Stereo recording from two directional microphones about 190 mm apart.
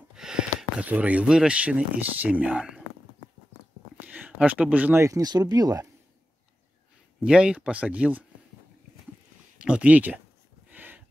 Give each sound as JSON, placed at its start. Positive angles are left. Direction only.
{"t": 0.1, "sound": "speech", "side_deg": -5}
{"t": 4.1, "sound": "speech", "side_deg": -10}
{"t": 7.2, "sound": "speech", "side_deg": -5}
{"t": 9.6, "sound": "speech", "side_deg": -5}
{"t": 10.7, "sound": "a sound", "side_deg": -10}